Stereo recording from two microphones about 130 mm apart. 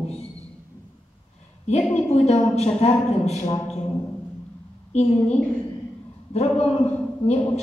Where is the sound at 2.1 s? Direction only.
55° left (ahead or behind).